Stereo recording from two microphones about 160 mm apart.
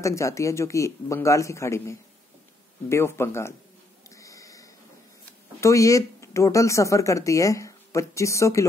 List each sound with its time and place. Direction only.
0.0 s speech: 20° left (ahead or behind)
4.1 s a sound: 20° left (ahead or behind)
5.6 s speech: 20° left (ahead or behind)